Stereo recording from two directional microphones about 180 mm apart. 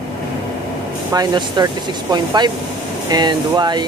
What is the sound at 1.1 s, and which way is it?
Speech, 25° right (ahead or behind).